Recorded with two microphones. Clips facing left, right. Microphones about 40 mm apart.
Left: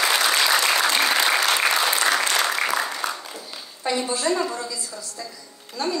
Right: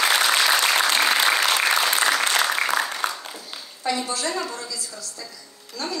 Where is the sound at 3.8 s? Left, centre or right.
Centre.